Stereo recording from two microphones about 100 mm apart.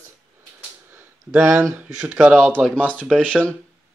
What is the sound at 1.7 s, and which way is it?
Speech, 15° right (ahead or behind).